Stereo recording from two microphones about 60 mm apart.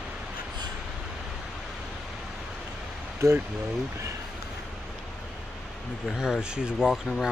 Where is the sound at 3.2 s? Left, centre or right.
Right.